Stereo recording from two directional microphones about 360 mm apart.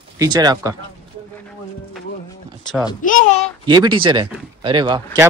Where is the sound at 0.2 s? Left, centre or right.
Centre.